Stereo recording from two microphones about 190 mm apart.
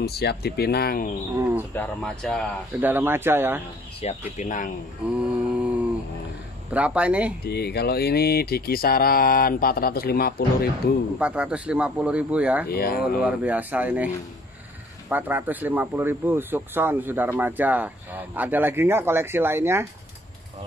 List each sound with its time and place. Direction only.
0.0 s speech: 55° left (ahead or behind)
1.3 s speech: 10° right (ahead or behind)
1.8 s speech: 5° left (ahead or behind)
2.8 s speech: 10° right (ahead or behind)
4.0 s speech: 35° left (ahead or behind)
5.2 s mantra: 5° right (ahead or behind)
6.7 s speech: 5° right (ahead or behind)
7.4 s speech: 60° left (ahead or behind)
11.1 s speech: 5° right (ahead or behind)
12.6 s speech: 55° left (ahead or behind)
13.2 s speech: 5° right (ahead or behind)